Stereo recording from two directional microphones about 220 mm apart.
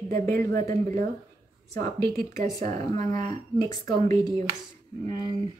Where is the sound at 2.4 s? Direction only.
35° right (ahead or behind).